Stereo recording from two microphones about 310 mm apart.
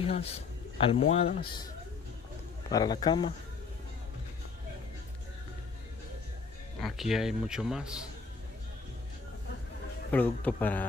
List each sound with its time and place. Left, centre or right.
0.0 s speech: centre
2.7 s a man's voice: centre
6.8 s a man's voice: centre
10.1 s a man's voice: centre